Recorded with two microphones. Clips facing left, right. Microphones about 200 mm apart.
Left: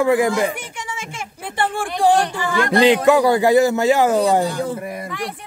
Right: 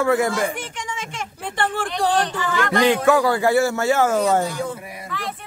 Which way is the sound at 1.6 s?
10° left (ahead or behind).